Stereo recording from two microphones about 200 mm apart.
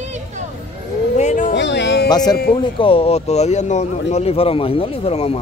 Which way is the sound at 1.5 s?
60° left (ahead or behind).